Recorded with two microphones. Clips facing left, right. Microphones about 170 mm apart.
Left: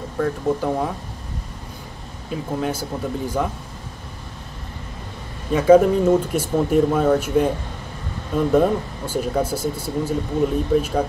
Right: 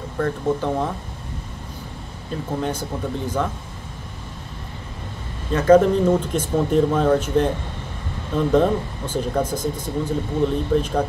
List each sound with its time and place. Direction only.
0.2 s speech: 5° left (ahead or behind)
2.3 s speech: 5° left (ahead or behind)
5.5 s speech: 10° left (ahead or behind)
8.5 s speech: 10° left (ahead or behind)